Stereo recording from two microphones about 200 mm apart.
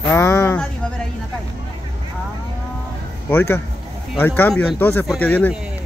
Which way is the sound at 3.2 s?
10° left (ahead or behind).